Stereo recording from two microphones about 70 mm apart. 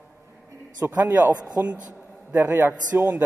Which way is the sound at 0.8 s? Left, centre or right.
Right.